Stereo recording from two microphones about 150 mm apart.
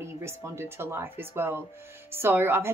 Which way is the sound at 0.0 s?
15° right (ahead or behind).